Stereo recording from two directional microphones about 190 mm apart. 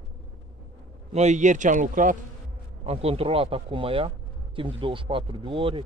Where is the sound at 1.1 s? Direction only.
35° right (ahead or behind).